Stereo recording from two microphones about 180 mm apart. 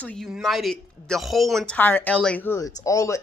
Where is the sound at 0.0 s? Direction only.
5° left (ahead or behind).